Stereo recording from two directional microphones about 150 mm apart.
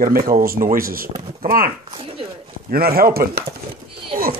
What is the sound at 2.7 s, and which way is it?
Speech, 85° right.